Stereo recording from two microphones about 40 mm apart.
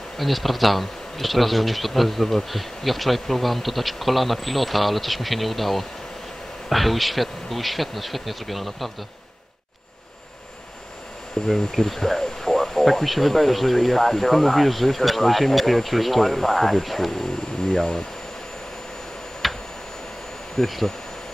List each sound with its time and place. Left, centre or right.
0.2 s speech: centre
11.4 s speech: centre
19.4 s tick-tock: centre
20.5 s speech: centre